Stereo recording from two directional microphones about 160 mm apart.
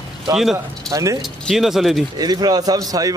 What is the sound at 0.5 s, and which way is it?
Speech, 20° right (ahead or behind).